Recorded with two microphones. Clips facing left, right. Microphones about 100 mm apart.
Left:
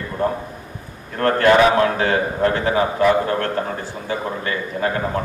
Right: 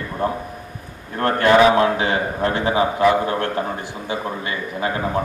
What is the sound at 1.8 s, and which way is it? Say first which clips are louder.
A man's voice: even; 20° right (ahead or behind).